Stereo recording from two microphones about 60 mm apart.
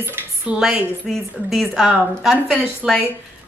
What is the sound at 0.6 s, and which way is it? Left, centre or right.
A woman's voice, centre.